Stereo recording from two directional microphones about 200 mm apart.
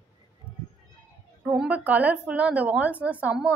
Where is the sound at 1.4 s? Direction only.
5° right (ahead or behind).